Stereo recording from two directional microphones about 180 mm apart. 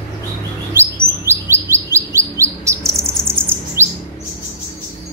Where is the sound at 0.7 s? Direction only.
15° right (ahead or behind).